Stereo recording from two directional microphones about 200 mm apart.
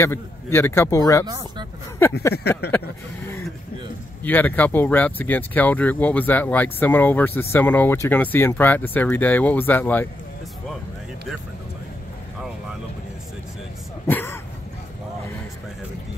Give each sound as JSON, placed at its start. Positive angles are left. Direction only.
{"t": 0.0, "sound": "speech", "side_deg": 10}
{"t": 1.2, "sound": "speech", "side_deg": -20}
{"t": 2.0, "sound": "speech", "side_deg": 10}
{"t": 2.6, "sound": "speech", "side_deg": 55}
{"t": 4.2, "sound": "speech", "side_deg": 10}
{"t": 14.0, "sound": "a sound", "side_deg": 10}